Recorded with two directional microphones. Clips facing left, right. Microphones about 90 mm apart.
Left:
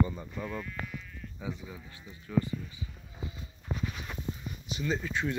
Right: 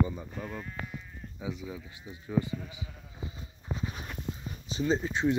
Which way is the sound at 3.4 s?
30° right (ahead or behind).